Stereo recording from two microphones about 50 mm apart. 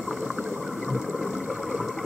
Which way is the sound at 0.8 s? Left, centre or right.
Centre.